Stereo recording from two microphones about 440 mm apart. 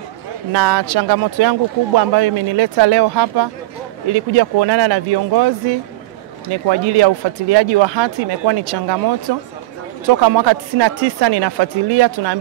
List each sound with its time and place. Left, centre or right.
0.5 s speech: right
6.7 s speech: right
10.0 s speech: right